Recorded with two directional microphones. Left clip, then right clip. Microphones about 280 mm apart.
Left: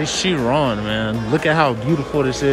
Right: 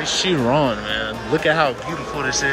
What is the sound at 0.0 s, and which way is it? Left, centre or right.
Speech, left.